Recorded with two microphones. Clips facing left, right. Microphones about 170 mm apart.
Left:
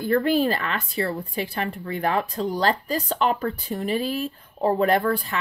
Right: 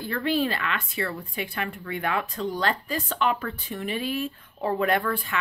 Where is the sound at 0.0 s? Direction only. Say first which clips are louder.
Left 5 dB; 45° left (ahead or behind).